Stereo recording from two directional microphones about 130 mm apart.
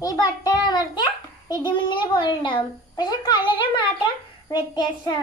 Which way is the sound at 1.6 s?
35° left (ahead or behind).